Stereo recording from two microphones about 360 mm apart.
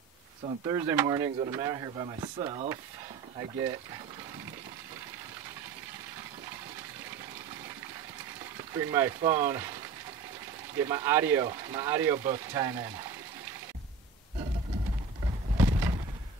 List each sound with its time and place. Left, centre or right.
0.5 s speech: centre
8.5 s speech: centre
10.8 s speech: centre
15.5 s bird: centre